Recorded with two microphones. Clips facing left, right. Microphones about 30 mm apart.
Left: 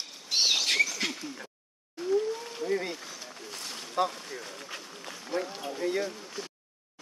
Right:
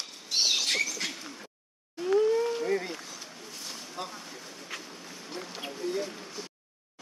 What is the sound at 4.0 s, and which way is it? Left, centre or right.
Boat, left.